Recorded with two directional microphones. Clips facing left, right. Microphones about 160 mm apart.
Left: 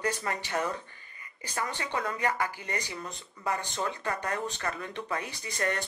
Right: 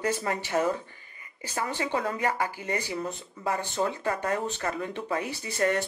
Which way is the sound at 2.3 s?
10° right (ahead or behind).